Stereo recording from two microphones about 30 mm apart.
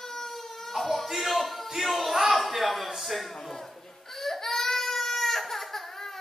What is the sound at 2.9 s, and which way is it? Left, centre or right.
Music, centre.